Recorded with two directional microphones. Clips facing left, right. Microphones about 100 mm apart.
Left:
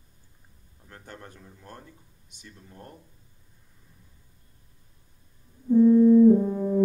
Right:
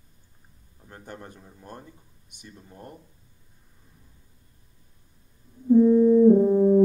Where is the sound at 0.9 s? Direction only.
15° right (ahead or behind).